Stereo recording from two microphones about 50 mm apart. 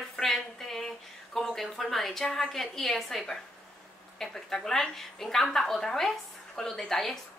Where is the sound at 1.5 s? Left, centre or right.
Centre.